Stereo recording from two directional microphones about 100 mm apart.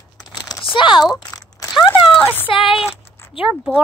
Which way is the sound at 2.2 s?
20° left (ahead or behind).